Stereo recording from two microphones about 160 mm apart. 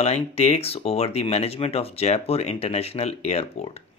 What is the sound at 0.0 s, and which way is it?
Speech, 40° left (ahead or behind).